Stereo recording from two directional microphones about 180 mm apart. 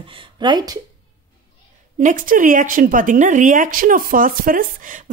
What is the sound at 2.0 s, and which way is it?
Speech, 50° right (ahead or behind).